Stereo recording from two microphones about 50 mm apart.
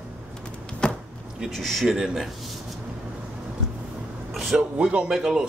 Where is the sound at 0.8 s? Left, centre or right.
Centre.